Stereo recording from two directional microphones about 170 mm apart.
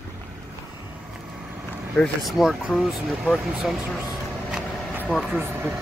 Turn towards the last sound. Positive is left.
turn(degrees=-10)  # may be behind; listen again after turning